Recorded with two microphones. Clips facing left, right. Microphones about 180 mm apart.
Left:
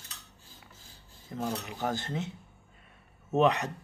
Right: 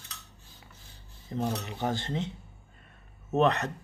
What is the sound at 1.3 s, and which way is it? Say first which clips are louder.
Speech: right 2 dB; centre (ahead or behind).